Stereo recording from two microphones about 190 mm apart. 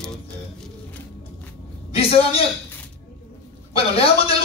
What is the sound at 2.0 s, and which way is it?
Speech, 30° left (ahead or behind).